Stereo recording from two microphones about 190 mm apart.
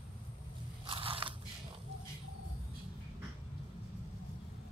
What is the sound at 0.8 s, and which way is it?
Biting, 25° right (ahead or behind).